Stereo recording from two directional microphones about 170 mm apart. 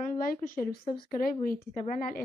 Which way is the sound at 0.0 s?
55° left (ahead or behind).